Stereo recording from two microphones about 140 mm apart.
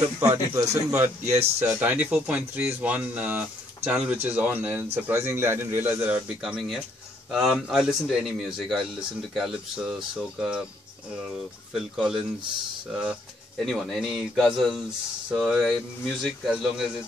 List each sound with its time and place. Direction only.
0.3 s a man's voice: 15° right (ahead or behind); by 9.9 s centre (ahead or behind)
11.7 s speech: centre (ahead or behind)